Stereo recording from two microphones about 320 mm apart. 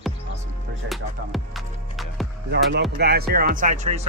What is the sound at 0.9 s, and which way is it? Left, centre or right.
Music, centre.